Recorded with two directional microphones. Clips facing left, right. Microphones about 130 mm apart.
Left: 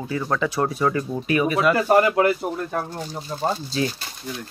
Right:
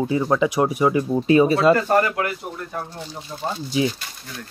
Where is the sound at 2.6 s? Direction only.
50° left (ahead or behind).